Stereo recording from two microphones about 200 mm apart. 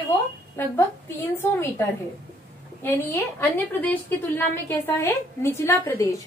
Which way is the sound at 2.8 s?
10° left (ahead or behind).